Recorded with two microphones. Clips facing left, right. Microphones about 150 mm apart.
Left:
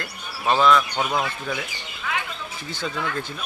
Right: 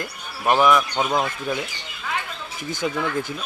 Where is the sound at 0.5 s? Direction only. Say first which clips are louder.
Right 1 dB; 15° right (ahead or behind).